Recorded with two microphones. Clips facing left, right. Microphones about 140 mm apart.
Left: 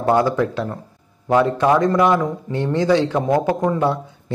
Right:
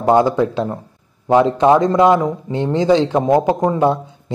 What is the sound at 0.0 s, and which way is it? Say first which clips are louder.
A man's voice: right 3 dB; 20° right (ahead or behind).